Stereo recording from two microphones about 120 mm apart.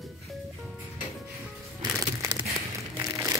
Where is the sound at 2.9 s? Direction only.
30° right (ahead or behind).